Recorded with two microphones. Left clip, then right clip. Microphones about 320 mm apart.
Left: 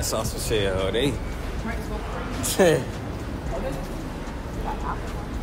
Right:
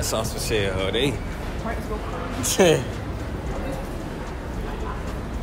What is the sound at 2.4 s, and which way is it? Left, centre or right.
Speech, centre.